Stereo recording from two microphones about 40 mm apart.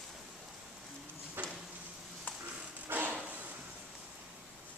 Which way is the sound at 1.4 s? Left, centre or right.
Right.